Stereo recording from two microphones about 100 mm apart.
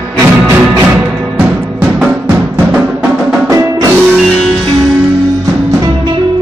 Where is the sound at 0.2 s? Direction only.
30° right (ahead or behind).